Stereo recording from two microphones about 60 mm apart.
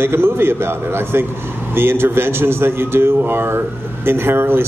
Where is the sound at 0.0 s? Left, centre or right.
Right.